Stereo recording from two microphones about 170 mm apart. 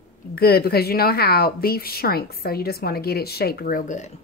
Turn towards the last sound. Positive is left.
turn(degrees=45)  # may be behind; listen again after turning